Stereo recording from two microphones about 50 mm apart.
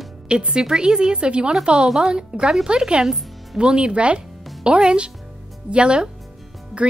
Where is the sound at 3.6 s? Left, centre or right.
Centre.